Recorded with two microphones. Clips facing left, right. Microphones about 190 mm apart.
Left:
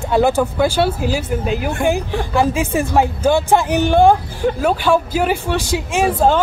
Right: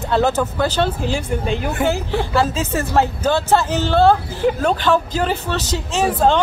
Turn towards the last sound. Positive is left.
turn(degrees=10)  # may be behind; listen again after turning